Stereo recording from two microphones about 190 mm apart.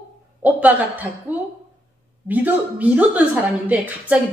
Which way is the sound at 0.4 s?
10° right (ahead or behind).